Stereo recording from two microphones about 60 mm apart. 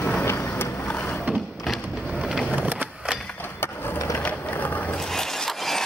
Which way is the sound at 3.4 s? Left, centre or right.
Left.